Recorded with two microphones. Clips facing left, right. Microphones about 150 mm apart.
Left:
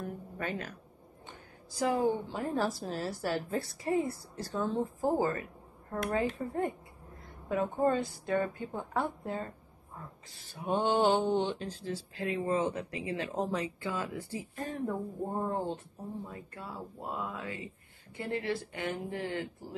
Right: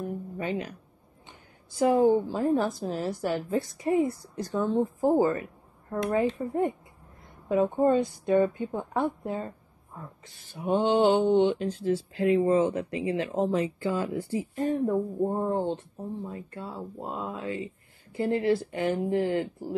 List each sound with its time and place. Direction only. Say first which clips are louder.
0.0 s music: right 5 dB; 15° right (ahead or behind)
1.7 s speech: right 8 dB; 25° right (ahead or behind)
10.7 s mantra: right 5 dB; 20° right (ahead or behind)
11.2 s mantra: right 8 dB; centre (ahead or behind)
11.5 s speech: right 10 dB; 25° right (ahead or behind)